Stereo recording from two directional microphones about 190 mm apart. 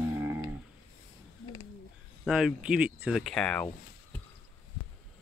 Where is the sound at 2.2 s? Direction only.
5° right (ahead or behind).